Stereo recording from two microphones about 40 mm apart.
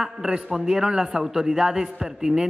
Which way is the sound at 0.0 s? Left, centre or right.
Centre.